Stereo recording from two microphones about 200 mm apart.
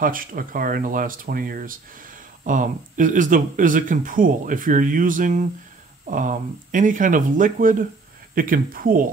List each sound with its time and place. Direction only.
0.0 s speech: 45° right (ahead or behind)